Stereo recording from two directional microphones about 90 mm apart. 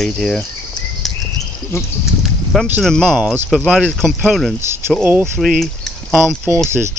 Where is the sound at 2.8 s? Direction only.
5° left (ahead or behind).